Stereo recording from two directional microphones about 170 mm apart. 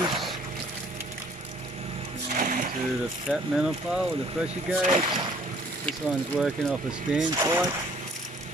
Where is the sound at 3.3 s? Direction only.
5° right (ahead or behind).